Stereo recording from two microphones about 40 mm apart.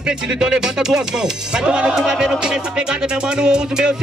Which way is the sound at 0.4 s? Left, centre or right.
Centre.